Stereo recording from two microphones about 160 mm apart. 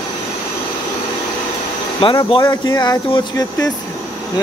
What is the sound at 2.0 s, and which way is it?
Speech, 35° left (ahead or behind).